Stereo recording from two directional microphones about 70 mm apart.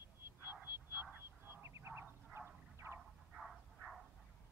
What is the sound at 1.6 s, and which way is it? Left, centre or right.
Bow-wow, right.